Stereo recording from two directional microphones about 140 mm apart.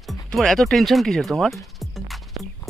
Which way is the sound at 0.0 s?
Centre (ahead or behind).